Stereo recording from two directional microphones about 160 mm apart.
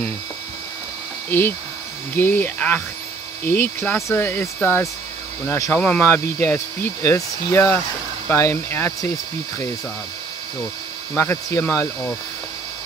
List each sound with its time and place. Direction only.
2.1 s speech: 10° left (ahead or behind)
11.1 s speech: 15° left (ahead or behind)